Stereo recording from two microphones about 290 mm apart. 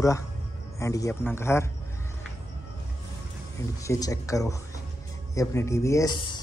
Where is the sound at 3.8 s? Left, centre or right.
Centre.